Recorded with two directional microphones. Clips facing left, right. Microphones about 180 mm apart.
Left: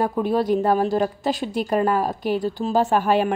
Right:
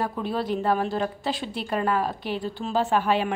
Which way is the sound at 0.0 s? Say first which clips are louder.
Left 7 dB; 45° left (ahead or behind).